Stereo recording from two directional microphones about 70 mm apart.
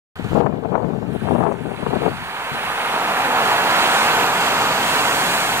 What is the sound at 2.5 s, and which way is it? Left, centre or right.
Waves, right.